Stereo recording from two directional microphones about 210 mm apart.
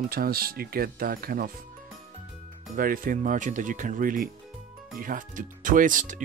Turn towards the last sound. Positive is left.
turn(degrees=-40)  # may be behind; listen again after turning